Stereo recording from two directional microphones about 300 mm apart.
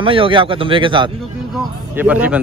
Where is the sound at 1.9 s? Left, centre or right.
Centre.